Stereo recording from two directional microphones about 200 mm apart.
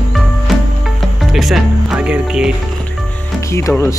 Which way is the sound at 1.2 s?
Centre (ahead or behind).